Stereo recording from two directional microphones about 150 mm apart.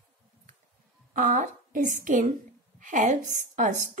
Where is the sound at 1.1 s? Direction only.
60° right (ahead or behind).